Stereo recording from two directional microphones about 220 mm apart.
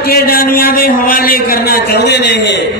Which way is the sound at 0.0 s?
45° left (ahead or behind).